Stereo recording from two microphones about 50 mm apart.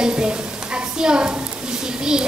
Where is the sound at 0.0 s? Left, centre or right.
Centre.